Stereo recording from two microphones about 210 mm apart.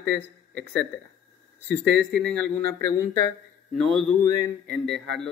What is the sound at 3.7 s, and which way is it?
Speech, centre (ahead or behind).